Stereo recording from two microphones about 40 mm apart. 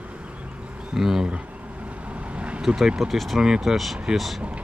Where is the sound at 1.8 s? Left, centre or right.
Right.